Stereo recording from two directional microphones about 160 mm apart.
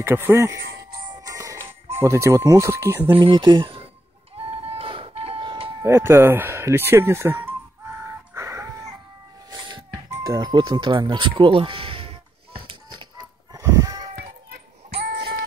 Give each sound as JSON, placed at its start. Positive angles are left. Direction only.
{"t": 0.0, "sound": "speech", "side_deg": -15}
{"t": 1.2, "sound": "music", "side_deg": -20}
{"t": 2.0, "sound": "speech", "side_deg": -20}
{"t": 3.2, "sound": "speech", "side_deg": -30}
{"t": 4.6, "sound": "music", "side_deg": -35}
{"t": 5.9, "sound": "speech", "side_deg": -15}
{"t": 8.0, "sound": "a sound", "side_deg": -15}
{"t": 10.2, "sound": "music", "side_deg": -25}
{"t": 13.6, "sound": "a sound", "side_deg": -20}
{"t": 14.1, "sound": "children playing", "side_deg": -80}